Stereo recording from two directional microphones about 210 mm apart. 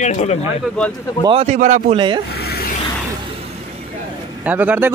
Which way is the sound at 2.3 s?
50° left (ahead or behind).